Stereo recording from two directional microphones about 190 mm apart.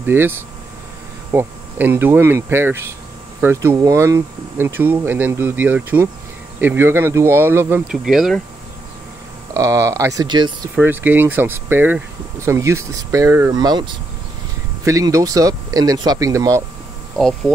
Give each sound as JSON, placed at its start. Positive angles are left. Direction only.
{"t": 0.0, "sound": "speech", "side_deg": -10}
{"t": 1.3, "sound": "speech", "side_deg": -10}
{"t": 9.5, "sound": "speech", "side_deg": -15}
{"t": 10.8, "sound": "speech", "side_deg": -10}